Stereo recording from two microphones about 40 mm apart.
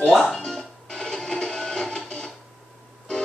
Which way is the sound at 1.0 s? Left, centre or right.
Centre.